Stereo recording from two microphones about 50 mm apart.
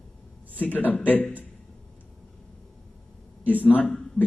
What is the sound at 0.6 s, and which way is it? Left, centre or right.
Speech, left.